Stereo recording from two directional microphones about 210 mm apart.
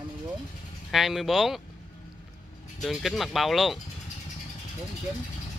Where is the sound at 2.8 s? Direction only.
Centre (ahead or behind).